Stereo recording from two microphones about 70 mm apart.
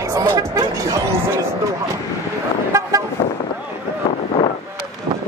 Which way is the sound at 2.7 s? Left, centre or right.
Right.